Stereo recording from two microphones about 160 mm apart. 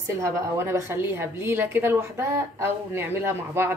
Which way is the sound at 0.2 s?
15° right (ahead or behind).